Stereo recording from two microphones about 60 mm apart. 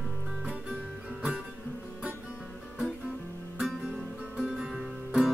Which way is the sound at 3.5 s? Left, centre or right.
Centre.